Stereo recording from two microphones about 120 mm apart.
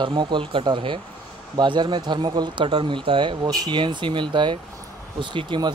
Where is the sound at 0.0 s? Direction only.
40° right (ahead or behind).